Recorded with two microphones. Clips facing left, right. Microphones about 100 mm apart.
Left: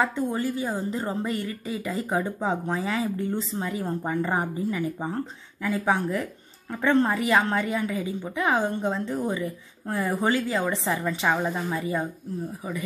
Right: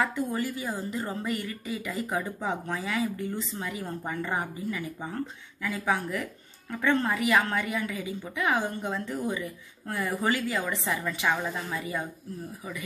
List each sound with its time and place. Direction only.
0.0 s a woman's voice: 25° left (ahead or behind)